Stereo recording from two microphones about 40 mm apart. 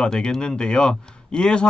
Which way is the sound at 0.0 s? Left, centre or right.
Left.